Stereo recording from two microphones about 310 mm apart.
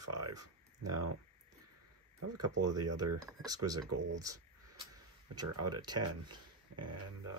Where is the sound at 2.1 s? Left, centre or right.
Right.